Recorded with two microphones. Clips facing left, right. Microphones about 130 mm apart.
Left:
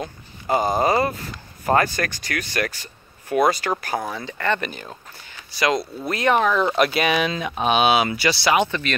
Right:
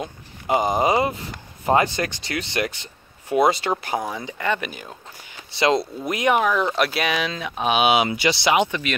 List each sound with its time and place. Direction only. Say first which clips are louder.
0.0 s speech: even; 15° right (ahead or behind)
5.5 s speech: right 2 dB; 25° right (ahead or behind)